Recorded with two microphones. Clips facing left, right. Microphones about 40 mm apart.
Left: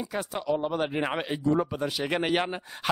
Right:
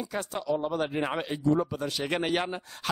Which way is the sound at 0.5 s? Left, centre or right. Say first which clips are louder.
Left 1 dB; centre.